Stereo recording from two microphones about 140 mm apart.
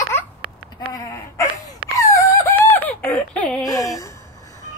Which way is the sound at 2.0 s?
25° left (ahead or behind).